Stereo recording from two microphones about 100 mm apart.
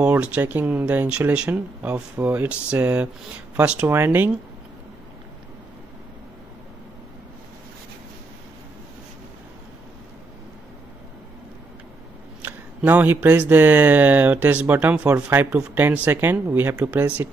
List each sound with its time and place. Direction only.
0.0 s speech: 15° right (ahead or behind)
12.4 s speech: 20° right (ahead or behind)